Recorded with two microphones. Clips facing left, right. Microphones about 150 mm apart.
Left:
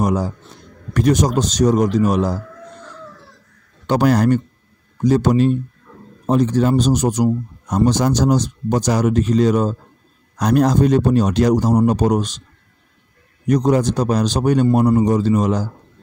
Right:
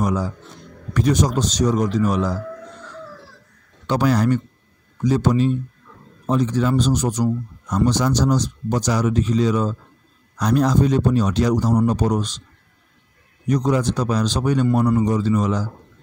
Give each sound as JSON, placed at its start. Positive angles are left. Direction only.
{"t": 0.0, "sound": "a man's voice", "side_deg": 45}
{"t": 1.3, "sound": "speech", "side_deg": 45}
{"t": 3.8, "sound": "speech", "side_deg": 50}
{"t": 11.5, "sound": "a man's voice", "side_deg": 40}
{"t": 13.5, "sound": "speech", "side_deg": 45}